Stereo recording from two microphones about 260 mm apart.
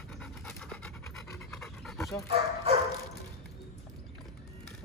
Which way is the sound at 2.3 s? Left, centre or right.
Right.